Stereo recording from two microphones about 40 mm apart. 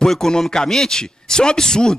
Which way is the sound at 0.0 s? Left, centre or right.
Centre.